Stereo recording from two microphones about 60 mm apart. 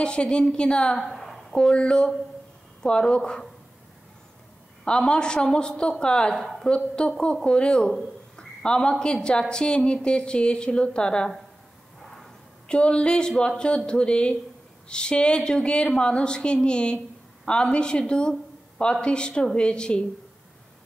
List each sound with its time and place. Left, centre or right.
0.0 s a woman's voice: centre
0.9 s a sound: centre
1.5 s a woman's voice: centre
4.8 s a woman's voice: centre
6.4 s speech: centre
7.0 s a woman's voice: centre
8.4 s a sound: centre
9.0 s a woman's voice: centre
12.6 s a woman's voice: centre